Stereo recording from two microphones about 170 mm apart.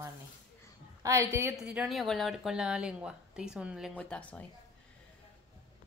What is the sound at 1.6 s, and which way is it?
Speech, 5° right (ahead or behind).